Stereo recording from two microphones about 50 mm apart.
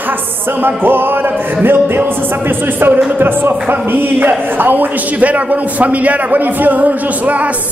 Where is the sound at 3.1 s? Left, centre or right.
Right.